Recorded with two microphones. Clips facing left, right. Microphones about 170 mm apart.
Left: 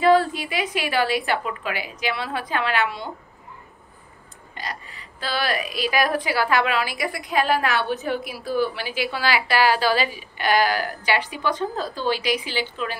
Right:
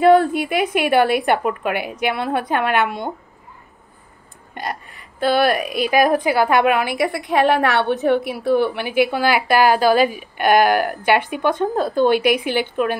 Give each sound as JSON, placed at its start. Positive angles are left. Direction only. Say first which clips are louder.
{"t": 0.0, "sound": "a woman's voice", "louder": "right 5 dB", "side_deg": -55}
{"t": 4.6, "sound": "a woman's voice", "louder": "right 6 dB", "side_deg": -55}